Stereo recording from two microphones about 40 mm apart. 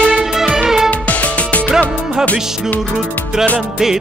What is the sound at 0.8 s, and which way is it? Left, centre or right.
Music, left.